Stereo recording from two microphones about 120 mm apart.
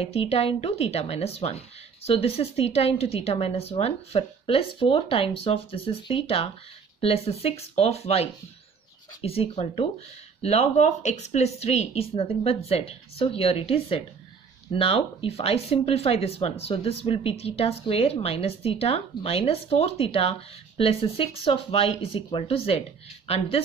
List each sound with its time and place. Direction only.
0.0 s a woman's voice: 55° left (ahead or behind)